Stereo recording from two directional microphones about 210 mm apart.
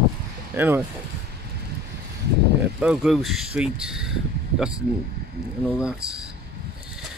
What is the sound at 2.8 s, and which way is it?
Speech, 5° right (ahead or behind).